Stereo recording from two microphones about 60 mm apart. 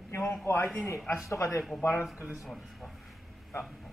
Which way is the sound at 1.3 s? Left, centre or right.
Left.